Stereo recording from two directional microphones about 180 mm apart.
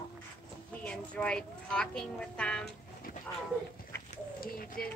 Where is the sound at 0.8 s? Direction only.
5° left (ahead or behind).